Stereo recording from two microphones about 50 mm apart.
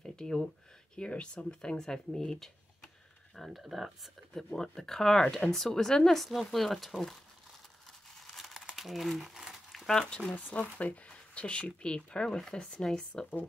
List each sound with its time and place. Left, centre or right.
0.0 s a sound: centre
0.9 s speech: left; by 4.1 s centre
4.6 s speech: centre
8.4 s crumpling: centre
9.8 s speech: centre
10.3 s speech: left